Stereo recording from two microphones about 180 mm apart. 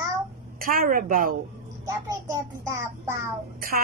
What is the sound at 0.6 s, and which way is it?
Speech, 50° right (ahead or behind).